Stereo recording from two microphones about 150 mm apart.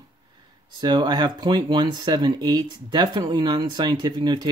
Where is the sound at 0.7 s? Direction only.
30° right (ahead or behind).